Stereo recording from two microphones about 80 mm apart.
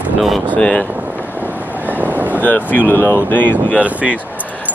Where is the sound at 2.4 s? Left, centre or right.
Left.